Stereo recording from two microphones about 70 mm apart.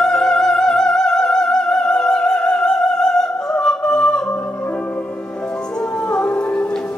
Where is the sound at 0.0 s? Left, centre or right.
Centre.